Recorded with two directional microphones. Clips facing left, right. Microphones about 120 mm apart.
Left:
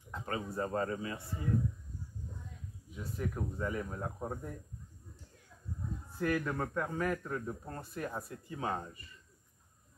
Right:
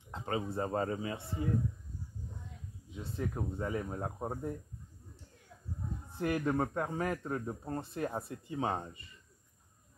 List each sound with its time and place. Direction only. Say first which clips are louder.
0.1 s speech: right 2 dB; 25° right (ahead or behind)
2.9 s speech: right 1 dB; 25° right (ahead or behind)
6.1 s speech: right 2 dB; 25° right (ahead or behind)